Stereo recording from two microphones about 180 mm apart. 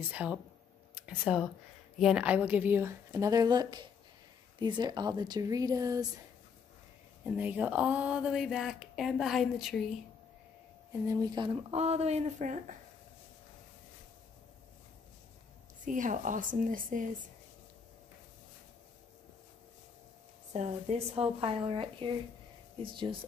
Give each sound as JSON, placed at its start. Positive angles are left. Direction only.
{"t": 0.1, "sound": "a woman's voice", "side_deg": -5}
{"t": 7.2, "sound": "speech", "side_deg": -10}
{"t": 10.9, "sound": "speech", "side_deg": -20}
{"t": 11.7, "sound": "speech", "side_deg": -35}
{"t": 15.8, "sound": "a woman's voice", "side_deg": -45}
{"t": 20.5, "sound": "speech", "side_deg": -35}